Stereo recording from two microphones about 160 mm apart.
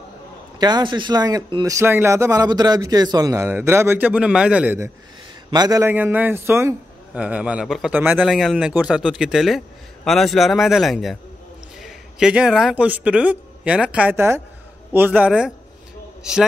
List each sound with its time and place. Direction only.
0.6 s speech: 25° right (ahead or behind)
5.5 s a man's voice: 25° right (ahead or behind); by 15.5 s 5° right (ahead or behind)